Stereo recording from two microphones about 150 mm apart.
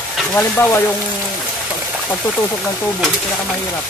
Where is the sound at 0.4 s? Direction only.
15° left (ahead or behind).